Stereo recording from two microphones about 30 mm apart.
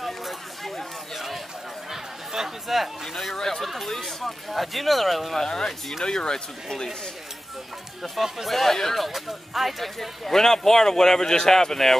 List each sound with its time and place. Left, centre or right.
1.1 s a sound: centre
1.9 s chatter: centre
3.3 s speech: centre
5.5 s speech: centre
8.0 s speech: centre
8.5 s speech: centre